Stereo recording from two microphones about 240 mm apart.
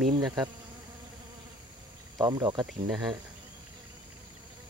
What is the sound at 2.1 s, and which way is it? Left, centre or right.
Speech, centre.